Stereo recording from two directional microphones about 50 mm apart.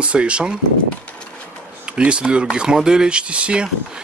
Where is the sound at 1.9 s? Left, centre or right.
Right.